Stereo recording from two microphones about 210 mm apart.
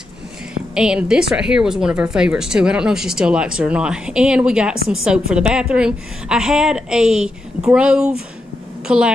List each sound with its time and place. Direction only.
0.7 s a woman's voice: 5° right (ahead or behind)